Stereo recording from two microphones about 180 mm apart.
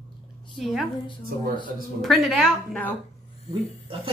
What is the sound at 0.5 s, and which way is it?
Speech, centre (ahead or behind).